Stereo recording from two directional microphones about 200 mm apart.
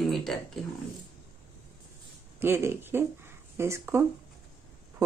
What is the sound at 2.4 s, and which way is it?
Speech, 10° right (ahead or behind).